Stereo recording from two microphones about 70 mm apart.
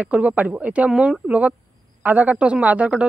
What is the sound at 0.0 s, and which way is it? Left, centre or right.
Speech, right.